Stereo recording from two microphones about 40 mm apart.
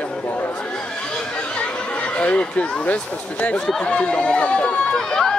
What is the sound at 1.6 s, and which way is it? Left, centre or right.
Chatter, left.